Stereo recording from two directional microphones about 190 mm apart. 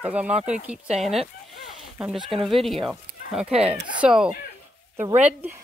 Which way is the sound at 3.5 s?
30° right (ahead or behind).